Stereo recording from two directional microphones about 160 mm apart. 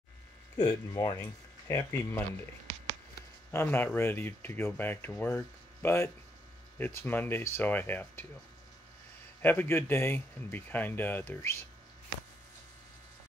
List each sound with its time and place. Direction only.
0.7 s speech: 25° left (ahead or behind)
3.5 s speech: 15° left (ahead or behind)
9.4 s speech: 10° left (ahead or behind)